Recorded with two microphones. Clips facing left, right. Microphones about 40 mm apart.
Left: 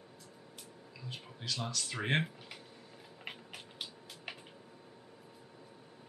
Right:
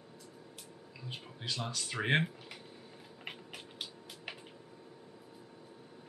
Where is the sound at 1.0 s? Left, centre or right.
Centre.